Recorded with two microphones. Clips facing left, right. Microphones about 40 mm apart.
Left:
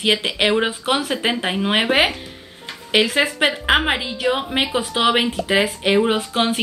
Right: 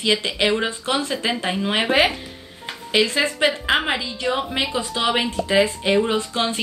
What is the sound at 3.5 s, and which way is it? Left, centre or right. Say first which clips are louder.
Speech: left 3 dB; centre.